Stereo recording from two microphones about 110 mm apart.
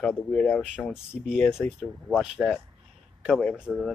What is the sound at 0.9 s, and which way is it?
Speech, 5° right (ahead or behind).